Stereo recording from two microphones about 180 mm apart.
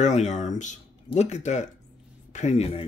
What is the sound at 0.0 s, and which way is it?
Speech, 40° left (ahead or behind).